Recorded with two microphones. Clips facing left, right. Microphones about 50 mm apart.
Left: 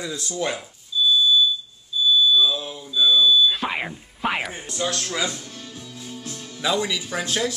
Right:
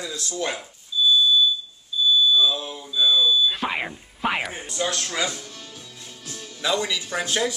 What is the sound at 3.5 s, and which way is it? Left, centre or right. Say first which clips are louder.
Music: left 1 dB; centre.